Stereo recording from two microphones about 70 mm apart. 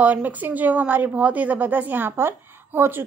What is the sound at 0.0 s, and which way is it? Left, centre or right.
A woman's voice, right.